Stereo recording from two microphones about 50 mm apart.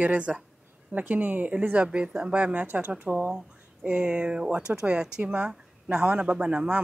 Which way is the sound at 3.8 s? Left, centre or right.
Right.